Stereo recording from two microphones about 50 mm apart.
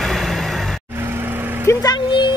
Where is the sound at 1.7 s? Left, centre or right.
Left.